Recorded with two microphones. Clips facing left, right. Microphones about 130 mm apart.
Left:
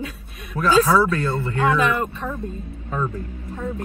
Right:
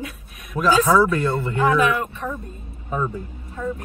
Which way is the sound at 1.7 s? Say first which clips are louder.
Right 1 dB; 30° left (ahead or behind).